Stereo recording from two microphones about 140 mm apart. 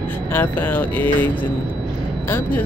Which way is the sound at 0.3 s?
15° left (ahead or behind).